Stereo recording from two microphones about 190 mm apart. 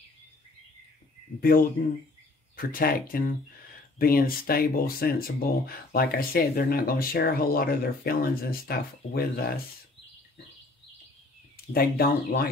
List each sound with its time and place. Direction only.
1.4 s speech: 50° left (ahead or behind)
11.5 s speech: 50° left (ahead or behind)